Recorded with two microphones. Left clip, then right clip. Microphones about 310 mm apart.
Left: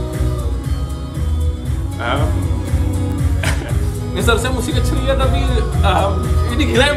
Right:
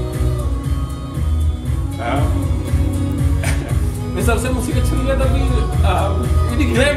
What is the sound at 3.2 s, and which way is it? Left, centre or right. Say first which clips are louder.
Music: left 2 dB; centre.